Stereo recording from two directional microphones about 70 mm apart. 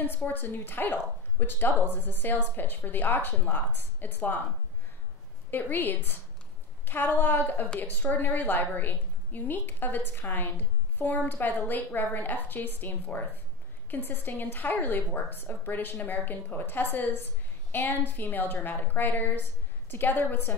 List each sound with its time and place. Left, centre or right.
0.0 s speech: left
5.5 s speech: left